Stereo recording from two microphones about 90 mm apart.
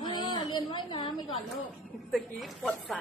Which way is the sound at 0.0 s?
55° left (ahead or behind).